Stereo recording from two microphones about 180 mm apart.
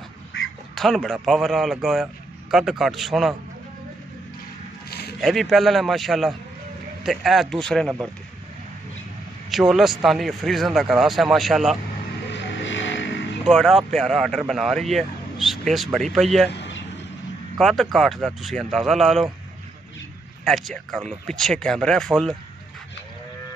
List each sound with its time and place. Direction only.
0.7 s speech: centre (ahead or behind)
5.2 s speech: centre (ahead or behind)
9.5 s speech: centre (ahead or behind)
12.3 s vehicle: 85° left
13.5 s speech: centre (ahead or behind)
17.6 s speech: centre (ahead or behind)
20.4 s speech: centre (ahead or behind)